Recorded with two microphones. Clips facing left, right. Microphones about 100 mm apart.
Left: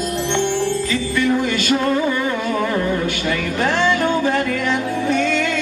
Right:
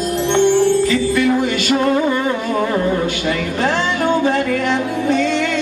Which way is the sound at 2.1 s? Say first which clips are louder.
Right 2 dB; 30° right (ahead or behind).